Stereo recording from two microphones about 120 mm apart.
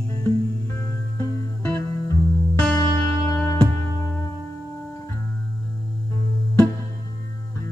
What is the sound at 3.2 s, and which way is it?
Music, 30° left (ahead or behind).